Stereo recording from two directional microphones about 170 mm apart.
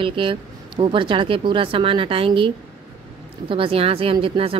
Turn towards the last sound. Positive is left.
turn(degrees=-30)  # may be behind; listen again after turning